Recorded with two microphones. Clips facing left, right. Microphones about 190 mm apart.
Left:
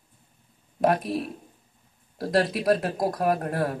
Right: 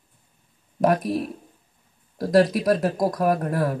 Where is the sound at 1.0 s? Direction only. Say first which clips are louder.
Right 3 dB; 40° right (ahead or behind).